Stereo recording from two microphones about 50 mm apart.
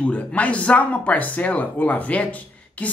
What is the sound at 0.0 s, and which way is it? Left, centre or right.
Speech, left.